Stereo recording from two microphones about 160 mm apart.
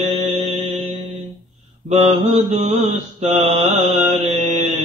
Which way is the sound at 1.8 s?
45° right (ahead or behind).